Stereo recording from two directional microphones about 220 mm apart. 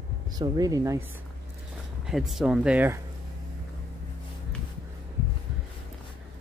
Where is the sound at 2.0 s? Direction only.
Centre (ahead or behind).